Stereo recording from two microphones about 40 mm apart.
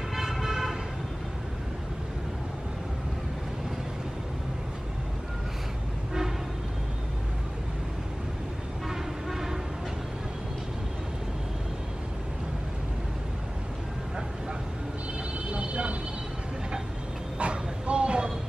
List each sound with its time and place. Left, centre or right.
0.1 s vehicle: centre
8.8 s train: centre
15.5 s vehicle: right
17.4 s dog: right